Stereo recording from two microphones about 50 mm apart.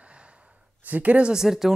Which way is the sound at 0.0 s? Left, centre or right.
Right.